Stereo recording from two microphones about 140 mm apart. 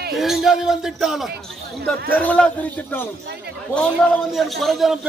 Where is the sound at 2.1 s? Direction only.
10° left (ahead or behind).